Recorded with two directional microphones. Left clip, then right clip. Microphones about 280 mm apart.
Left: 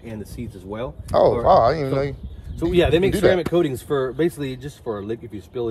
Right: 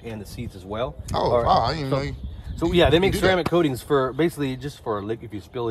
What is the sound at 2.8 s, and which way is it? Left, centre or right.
Speech, right.